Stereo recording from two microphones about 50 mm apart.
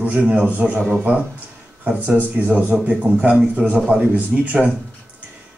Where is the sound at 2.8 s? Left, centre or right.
Right.